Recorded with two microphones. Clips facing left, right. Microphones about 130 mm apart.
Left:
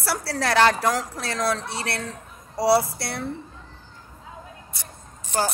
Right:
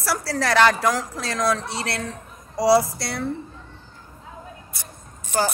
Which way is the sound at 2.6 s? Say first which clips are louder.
Right 2 dB; 30° left (ahead or behind).